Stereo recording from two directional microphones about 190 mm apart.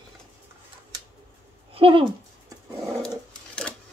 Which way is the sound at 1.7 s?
30° right (ahead or behind).